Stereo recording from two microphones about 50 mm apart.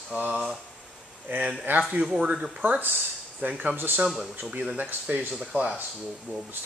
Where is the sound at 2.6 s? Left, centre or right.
Right.